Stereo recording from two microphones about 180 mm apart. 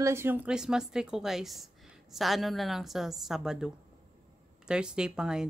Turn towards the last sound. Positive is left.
turn(degrees=-5)  # may be behind; listen again after turning